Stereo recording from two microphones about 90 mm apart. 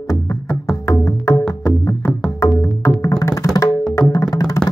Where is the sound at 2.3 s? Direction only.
30° left (ahead or behind).